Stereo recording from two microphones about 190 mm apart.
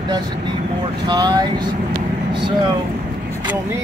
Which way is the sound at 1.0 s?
20° right (ahead or behind).